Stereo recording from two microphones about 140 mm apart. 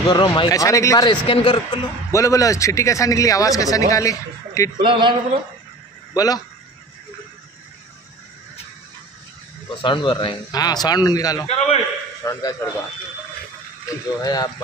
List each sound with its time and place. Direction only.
0.1 s speech: 30° left (ahead or behind)
1.3 s a man's voice: 40° left (ahead or behind)
2.1 s a man's voice: 25° left (ahead or behind)
4.7 s a sound: 35° right (ahead or behind)
6.1 s speech: 25° left (ahead or behind)
9.8 s speech: 35° left (ahead or behind)
11.4 s a man's voice: 50° left (ahead or behind)
12.2 s speech: 25° left (ahead or behind)
13.8 s speech: 25° left (ahead or behind)